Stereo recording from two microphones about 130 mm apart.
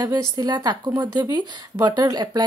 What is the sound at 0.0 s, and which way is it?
A woman's voice, 30° right (ahead or behind).